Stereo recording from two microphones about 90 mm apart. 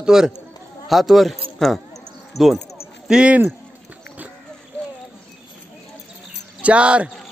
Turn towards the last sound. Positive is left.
turn(degrees=-15)  # may be behind; listen again after turning